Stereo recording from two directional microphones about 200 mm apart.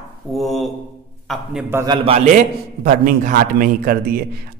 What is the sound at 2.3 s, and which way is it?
A man's voice, 40° right (ahead or behind).